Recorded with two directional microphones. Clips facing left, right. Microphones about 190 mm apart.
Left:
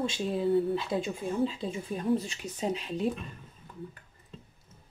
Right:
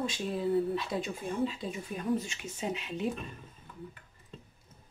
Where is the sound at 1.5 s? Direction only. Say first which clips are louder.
Left 3 dB; 30° left (ahead or behind).